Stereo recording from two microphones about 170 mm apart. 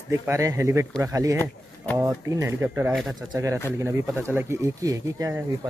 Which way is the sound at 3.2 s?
20° right (ahead or behind).